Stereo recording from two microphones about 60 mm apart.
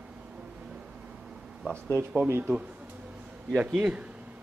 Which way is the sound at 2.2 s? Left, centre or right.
Right.